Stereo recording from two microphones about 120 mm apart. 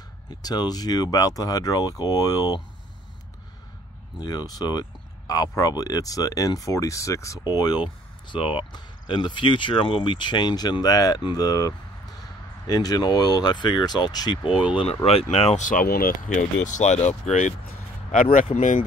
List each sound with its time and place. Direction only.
0.3 s speech: 35° left (ahead or behind)
4.2 s speech: 35° left (ahead or behind)
15.3 s speech: 55° left (ahead or behind)
16.3 s speech: 90° left; by 17.1 s 70° left (ahead or behind)
17.3 s speech: 80° left
18.1 s speech: 90° left